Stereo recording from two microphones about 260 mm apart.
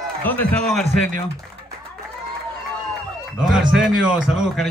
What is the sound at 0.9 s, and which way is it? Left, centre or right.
Speech, right.